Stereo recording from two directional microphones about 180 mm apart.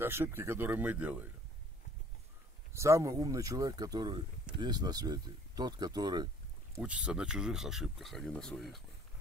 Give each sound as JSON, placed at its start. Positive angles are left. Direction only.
{"t": 0.0, "sound": "speech", "side_deg": -10}
{"t": 2.7, "sound": "speech", "side_deg": -15}
{"t": 6.8, "sound": "speech", "side_deg": -5}